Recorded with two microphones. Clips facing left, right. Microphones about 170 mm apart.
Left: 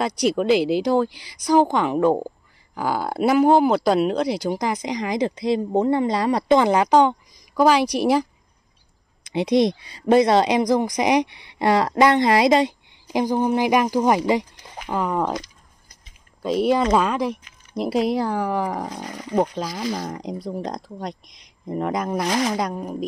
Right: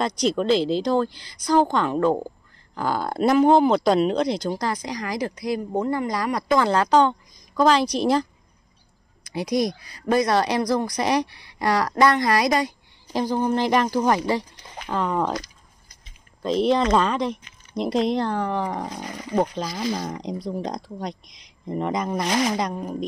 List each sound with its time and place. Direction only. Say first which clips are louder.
0.0 s speech: left 2 dB; 10° left (ahead or behind)
9.3 s speech: left 5 dB; 25° left (ahead or behind); by 15.3 s 5° left (ahead or behind)
16.4 s speech: left 1 dB; 5° left (ahead or behind)